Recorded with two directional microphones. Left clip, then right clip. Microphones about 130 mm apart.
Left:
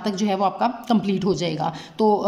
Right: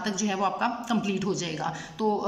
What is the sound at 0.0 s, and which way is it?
A man's voice, 35° left (ahead or behind).